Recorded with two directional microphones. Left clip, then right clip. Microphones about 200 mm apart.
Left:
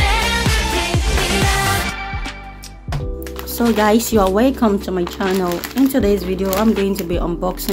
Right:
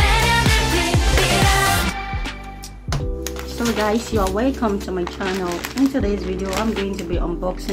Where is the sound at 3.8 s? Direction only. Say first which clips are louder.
Left 6 dB; 50° left (ahead or behind).